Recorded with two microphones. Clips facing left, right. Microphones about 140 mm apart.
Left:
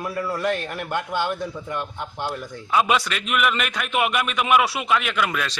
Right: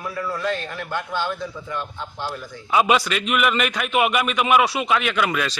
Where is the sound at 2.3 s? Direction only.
5° right (ahead or behind).